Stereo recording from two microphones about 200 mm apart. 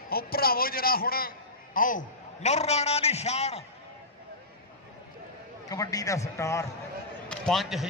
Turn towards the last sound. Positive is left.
turn(degrees=0)  # may be behind; listen again after turning